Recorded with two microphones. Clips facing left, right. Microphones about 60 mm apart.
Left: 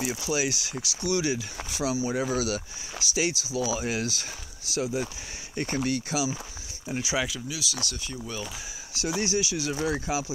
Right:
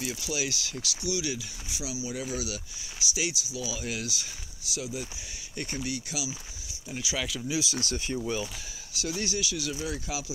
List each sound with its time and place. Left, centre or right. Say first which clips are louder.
0.0 s speech: left 5 dB; left
0.6 s speech: left 1 dB; left
1.0 s speech: left 5 dB; left
1.7 s speech: left 9 dB; left
2.0 s speech: left 5 dB; left
6.9 s speech: left 5 dB; left
7.4 s speech: right 3 dB; right
8.9 s speech: left 5 dB; left
9.7 s speech: left 6 dB; left
10.0 s speech: left 6 dB; left